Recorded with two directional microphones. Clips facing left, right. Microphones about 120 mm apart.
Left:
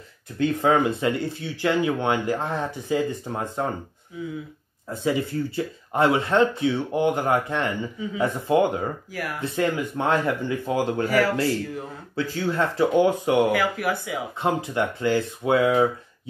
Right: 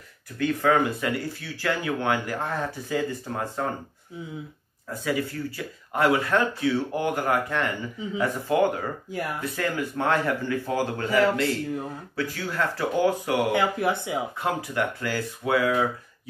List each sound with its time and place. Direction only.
0.4 s speech: 25° left (ahead or behind)
4.9 s speech: 25° left (ahead or behind)
11.1 s speech: 25° right (ahead or behind)
12.2 s speech: 25° left (ahead or behind)
13.5 s speech: 25° right (ahead or behind)
14.4 s speech: 25° left (ahead or behind)